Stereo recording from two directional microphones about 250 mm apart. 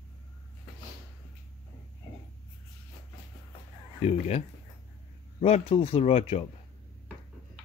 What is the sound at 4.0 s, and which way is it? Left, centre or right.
Speech, left.